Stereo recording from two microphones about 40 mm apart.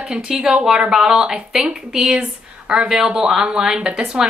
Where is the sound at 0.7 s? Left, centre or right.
Centre.